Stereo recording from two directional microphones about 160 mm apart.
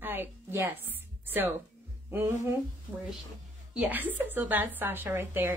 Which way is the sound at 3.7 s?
10° right (ahead or behind).